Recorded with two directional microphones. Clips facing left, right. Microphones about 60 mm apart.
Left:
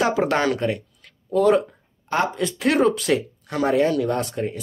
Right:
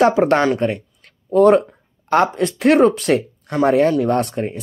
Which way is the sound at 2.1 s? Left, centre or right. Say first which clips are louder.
Right 6 dB; right.